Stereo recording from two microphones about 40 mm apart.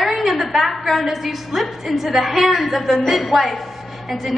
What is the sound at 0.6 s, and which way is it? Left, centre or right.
A woman's voice, centre.